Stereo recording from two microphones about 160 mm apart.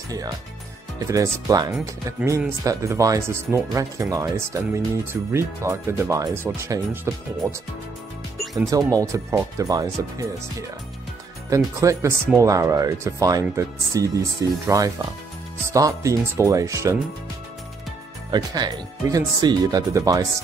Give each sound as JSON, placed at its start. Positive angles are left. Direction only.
{"t": 0.9, "sound": "speech", "side_deg": -20}
{"t": 8.6, "sound": "speech", "side_deg": -20}
{"t": 11.5, "sound": "speech", "side_deg": -20}
{"t": 18.3, "sound": "speech", "side_deg": -25}